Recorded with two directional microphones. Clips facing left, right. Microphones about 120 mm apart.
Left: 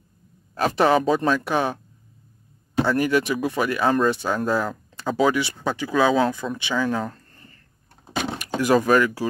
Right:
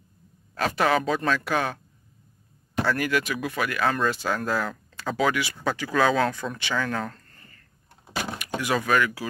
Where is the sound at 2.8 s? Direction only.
25° left (ahead or behind).